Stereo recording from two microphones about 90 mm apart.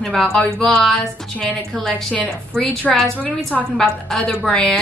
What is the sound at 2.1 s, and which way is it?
A woman's voice, 15° left (ahead or behind).